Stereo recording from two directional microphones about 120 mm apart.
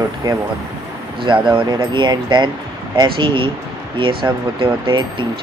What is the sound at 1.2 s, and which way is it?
Speech, 40° right (ahead or behind).